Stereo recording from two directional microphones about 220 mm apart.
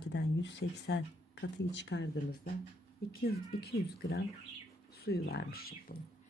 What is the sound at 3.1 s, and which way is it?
Speech, 45° left (ahead or behind).